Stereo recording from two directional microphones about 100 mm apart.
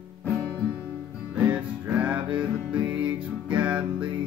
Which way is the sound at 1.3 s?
15° right (ahead or behind).